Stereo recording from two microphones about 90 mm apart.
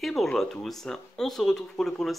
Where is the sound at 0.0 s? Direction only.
Centre (ahead or behind).